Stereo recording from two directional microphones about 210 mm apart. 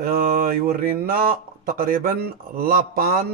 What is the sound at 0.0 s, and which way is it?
Speech, 45° right (ahead or behind).